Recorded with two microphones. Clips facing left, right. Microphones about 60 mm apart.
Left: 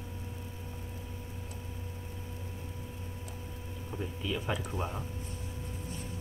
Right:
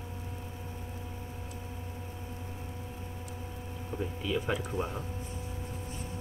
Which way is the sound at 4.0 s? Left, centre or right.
Centre.